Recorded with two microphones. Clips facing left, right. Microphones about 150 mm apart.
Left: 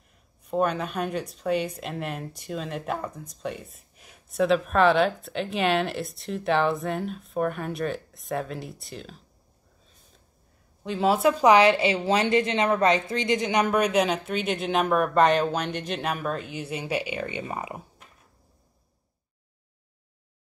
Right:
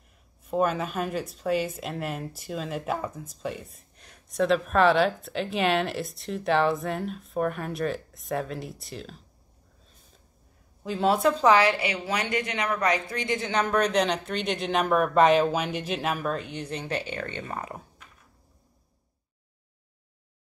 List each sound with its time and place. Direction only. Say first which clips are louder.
0.4 s speech: even; centre (ahead or behind)
10.8 s a woman's voice: left 1 dB; centre (ahead or behind)